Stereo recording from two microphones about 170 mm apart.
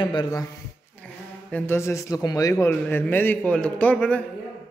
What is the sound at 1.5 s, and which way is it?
A man's voice, 15° left (ahead or behind).